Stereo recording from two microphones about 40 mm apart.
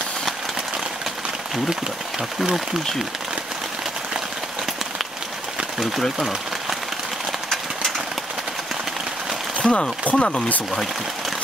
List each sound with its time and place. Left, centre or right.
5.8 s speech: centre
9.6 s a sound: left
10.1 s speech: centre